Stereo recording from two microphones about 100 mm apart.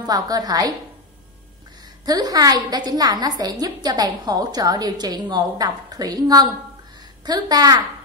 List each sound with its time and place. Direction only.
0.0 s a woman's voice: 40° right (ahead or behind)
2.0 s a woman's voice: 40° right (ahead or behind)